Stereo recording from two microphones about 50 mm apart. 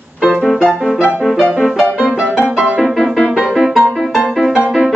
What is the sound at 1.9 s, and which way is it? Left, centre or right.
Music, centre.